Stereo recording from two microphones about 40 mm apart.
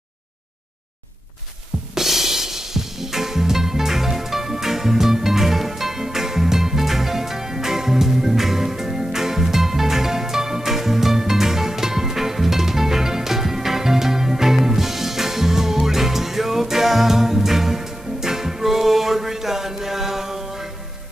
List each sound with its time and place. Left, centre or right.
2.0 s music: centre